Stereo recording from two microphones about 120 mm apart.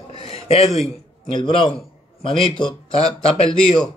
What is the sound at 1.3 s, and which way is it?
A man's voice, 40° left (ahead or behind).